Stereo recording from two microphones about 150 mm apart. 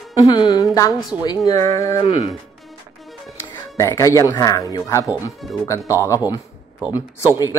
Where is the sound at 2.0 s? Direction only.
45° left (ahead or behind).